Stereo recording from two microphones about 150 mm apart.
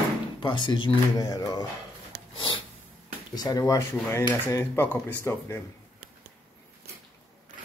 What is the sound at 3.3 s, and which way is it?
Speech, 25° left (ahead or behind).